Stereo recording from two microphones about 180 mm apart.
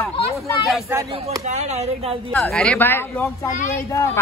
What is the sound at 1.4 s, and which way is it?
Speech, 40° right (ahead or behind).